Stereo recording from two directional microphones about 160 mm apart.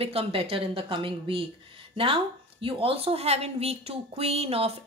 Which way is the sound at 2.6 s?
35° right (ahead or behind).